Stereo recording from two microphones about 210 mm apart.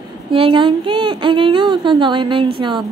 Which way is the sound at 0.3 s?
25° right (ahead or behind).